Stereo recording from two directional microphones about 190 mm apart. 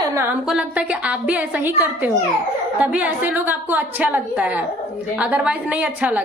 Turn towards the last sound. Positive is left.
turn(degrees=-10)  # may be behind; listen again after turning